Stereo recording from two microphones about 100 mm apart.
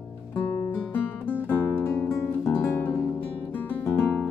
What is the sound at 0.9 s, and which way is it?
Music, 20° left (ahead or behind).